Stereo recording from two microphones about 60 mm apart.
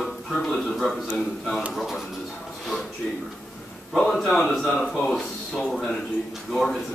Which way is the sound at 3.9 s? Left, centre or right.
Centre.